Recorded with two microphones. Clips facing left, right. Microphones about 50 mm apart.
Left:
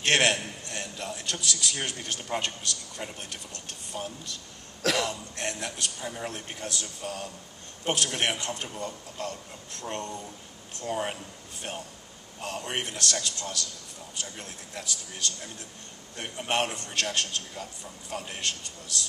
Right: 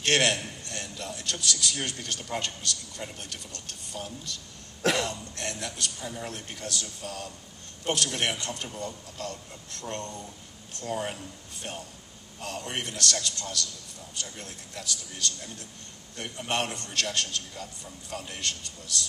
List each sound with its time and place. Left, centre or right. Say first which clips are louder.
0.0 s a man's voice: left 1 dB; left
12.4 s a man's voice: left 2 dB; left
14.8 s a man's voice: even; left